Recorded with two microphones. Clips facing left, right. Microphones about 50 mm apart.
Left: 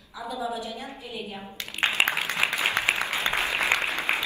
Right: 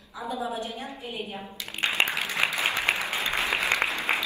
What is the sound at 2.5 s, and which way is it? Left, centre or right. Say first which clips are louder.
Applause: left 1 dB; left.